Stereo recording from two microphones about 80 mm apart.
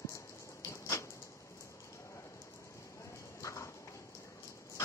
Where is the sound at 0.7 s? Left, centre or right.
Left.